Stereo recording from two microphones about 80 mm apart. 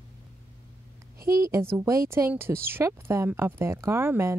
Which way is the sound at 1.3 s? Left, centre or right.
Right.